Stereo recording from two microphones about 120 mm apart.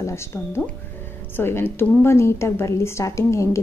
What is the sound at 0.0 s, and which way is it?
A woman's voice, 20° left (ahead or behind).